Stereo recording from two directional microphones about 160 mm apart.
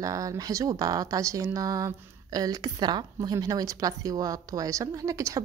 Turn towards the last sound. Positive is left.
turn(degrees=-20)  # may be behind; listen again after turning